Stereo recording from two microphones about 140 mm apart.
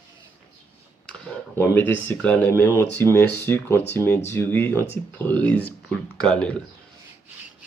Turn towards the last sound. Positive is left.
turn(degrees=5)  # may be behind; listen again after turning